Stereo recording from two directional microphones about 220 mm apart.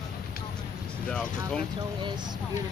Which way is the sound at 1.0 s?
5° left (ahead or behind).